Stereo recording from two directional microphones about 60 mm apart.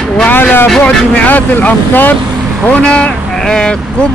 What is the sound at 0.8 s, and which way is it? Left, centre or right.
Speech, left.